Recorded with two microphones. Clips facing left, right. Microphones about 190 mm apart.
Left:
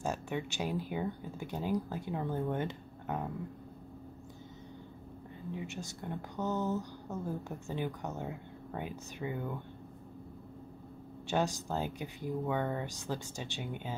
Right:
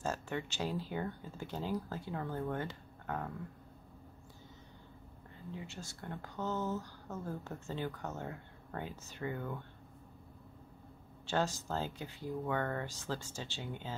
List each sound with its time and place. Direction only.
0.0 s speech: 15° left (ahead or behind)
5.5 s speech: 20° left (ahead or behind)
11.2 s speech: 15° left (ahead or behind)